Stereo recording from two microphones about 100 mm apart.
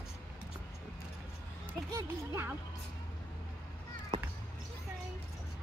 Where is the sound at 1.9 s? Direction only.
30° right (ahead or behind).